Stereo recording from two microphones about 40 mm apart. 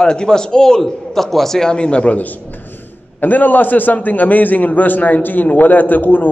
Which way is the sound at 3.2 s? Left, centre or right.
Left.